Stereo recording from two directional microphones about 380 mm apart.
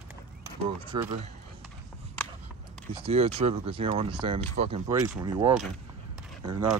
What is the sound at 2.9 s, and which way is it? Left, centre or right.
Speech, centre.